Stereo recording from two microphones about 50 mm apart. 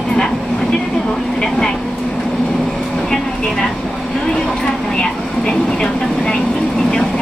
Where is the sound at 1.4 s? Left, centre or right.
Centre.